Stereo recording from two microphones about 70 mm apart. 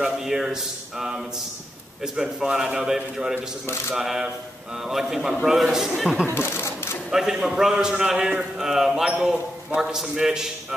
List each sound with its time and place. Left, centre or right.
0.0 s a man's voice: centre
6.2 s a sound: left
7.1 s a man's voice: centre